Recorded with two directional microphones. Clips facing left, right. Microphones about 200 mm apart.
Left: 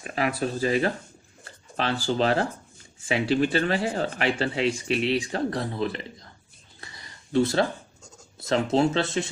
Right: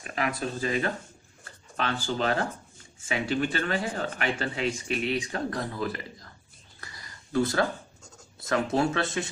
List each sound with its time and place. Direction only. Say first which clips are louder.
0.0 s speech: left 4 dB; 30° left (ahead or behind)
6.8 s a sound: left 1 dB; 25° left (ahead or behind)
8.5 s speech: left 3 dB; 25° left (ahead or behind)